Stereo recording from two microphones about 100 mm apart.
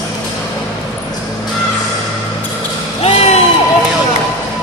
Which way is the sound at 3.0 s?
85° left.